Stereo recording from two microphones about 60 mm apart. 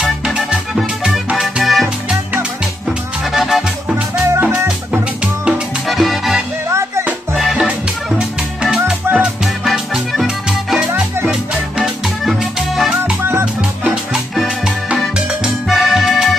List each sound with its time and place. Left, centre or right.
0.0 s music: centre
1.1 s music: centre
3.3 s music: centre
3.9 s music: right
5.2 s music: centre
5.9 s music: centre
6.7 s music: right
8.2 s music: centre
11.8 s music: centre
13.2 s music: right
15.1 s music: centre